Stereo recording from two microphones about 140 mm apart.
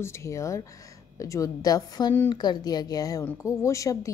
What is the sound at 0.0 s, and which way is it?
A woman's voice, 20° left (ahead or behind).